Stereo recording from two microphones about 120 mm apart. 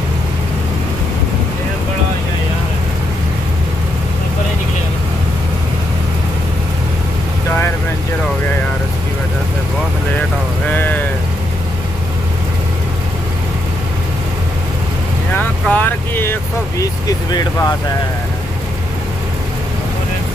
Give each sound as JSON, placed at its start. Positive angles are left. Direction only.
{"t": 10.7, "sound": "vehicle", "side_deg": 15}
{"t": 15.3, "sound": "vehicle", "side_deg": 15}
{"t": 16.8, "sound": "vehicle", "side_deg": 35}